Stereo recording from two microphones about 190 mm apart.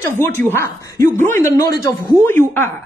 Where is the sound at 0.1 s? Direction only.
10° left (ahead or behind).